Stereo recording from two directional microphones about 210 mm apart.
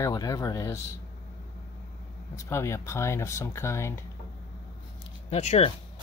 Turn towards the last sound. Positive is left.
turn(degrees=30)  # may be behind; listen again after turning